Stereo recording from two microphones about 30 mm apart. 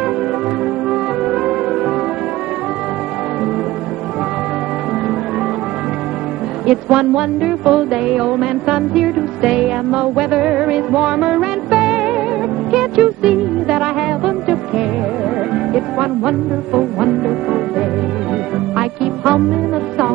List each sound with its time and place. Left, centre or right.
6.6 s music: right
15.7 s music: right
18.8 s music: right